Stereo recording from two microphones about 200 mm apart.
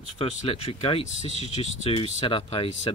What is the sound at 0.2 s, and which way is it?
Speech, 30° left (ahead or behind).